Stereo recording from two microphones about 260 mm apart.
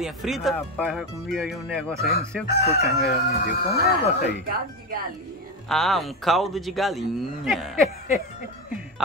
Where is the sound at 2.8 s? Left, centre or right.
Left.